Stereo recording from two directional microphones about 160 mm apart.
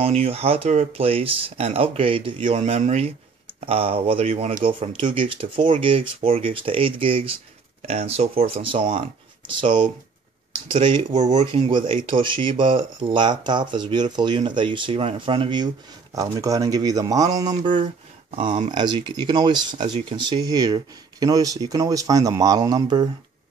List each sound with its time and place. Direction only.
0.0 s speech: 40° right (ahead or behind)
18.7 s speech: 30° right (ahead or behind)